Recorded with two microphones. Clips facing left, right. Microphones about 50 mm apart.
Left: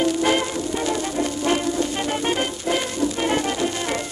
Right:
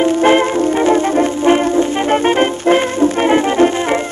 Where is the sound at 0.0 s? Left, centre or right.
Right.